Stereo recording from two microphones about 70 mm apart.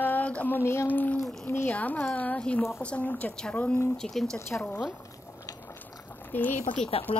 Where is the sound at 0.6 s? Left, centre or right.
Left.